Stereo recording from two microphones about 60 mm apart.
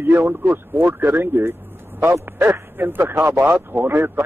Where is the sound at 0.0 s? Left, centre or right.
Right.